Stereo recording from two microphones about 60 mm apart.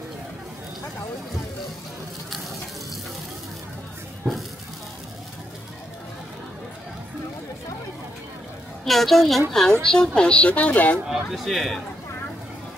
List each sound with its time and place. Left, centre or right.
8.8 s a woman's voice: centre; by 11.0 s left
11.1 s speech: centre
11.4 s a woman's voice: centre